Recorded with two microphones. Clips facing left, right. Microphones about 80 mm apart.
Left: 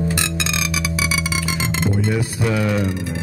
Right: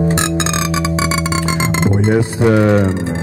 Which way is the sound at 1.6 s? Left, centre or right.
Right.